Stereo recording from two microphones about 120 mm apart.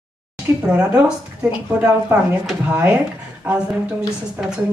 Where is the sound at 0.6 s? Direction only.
10° right (ahead or behind).